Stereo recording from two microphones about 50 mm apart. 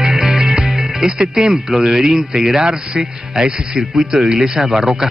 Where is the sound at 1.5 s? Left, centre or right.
Centre.